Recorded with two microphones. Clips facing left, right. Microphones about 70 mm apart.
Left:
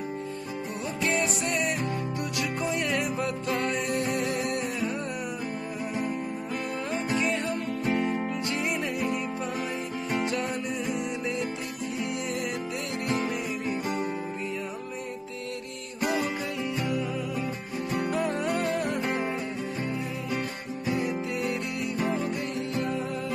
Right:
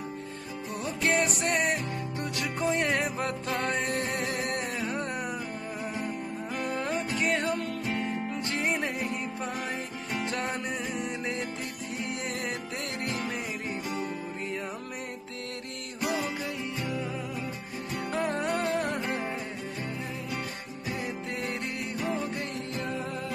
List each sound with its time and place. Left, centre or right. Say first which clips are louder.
1.0 s music: right 1 dB; right
2.1 s music: left 2 dB; right
8.5 s music: right 3 dB; right
10.3 s music: left 2 dB; right
18.2 s music: left 1 dB; right
19.0 s music: left 3 dB; left